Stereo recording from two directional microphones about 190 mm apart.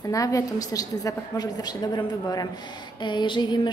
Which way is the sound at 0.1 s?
15° left (ahead or behind).